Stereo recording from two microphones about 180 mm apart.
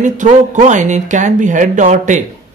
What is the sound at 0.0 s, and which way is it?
Speech, 45° right (ahead or behind).